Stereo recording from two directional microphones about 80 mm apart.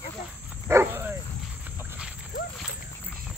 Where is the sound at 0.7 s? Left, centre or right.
Right.